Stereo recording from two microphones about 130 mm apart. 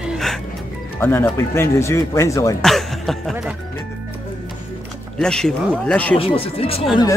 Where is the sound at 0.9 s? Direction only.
15° left (ahead or behind).